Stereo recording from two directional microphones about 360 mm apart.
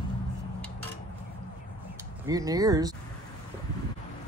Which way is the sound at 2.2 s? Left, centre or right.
Centre.